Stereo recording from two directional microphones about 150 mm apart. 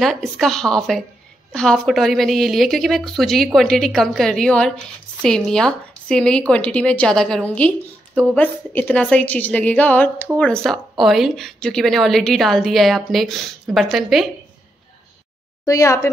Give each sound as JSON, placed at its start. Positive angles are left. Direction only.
{"t": 0.0, "sound": "a woman's voice", "side_deg": 0}
{"t": 15.6, "sound": "speech", "side_deg": 20}